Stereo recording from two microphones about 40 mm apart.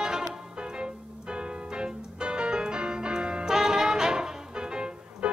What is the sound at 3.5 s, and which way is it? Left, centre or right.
Music, centre.